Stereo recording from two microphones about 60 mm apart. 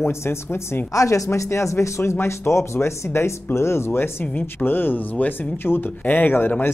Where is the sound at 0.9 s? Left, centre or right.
Left.